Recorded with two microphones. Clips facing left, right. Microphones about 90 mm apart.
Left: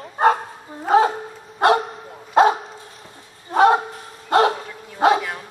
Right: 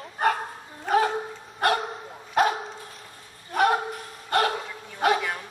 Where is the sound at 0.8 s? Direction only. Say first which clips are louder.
Left 6 dB; 25° left (ahead or behind).